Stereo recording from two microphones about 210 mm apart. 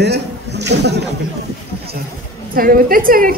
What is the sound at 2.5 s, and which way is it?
Speech, 45° right (ahead or behind).